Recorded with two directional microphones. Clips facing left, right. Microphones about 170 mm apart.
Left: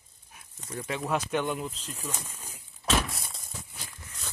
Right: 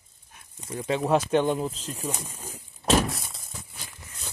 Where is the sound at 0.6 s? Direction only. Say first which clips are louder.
Right 3 dB; 15° right (ahead or behind).